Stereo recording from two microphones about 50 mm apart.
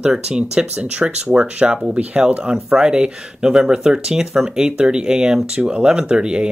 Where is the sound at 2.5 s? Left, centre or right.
Centre.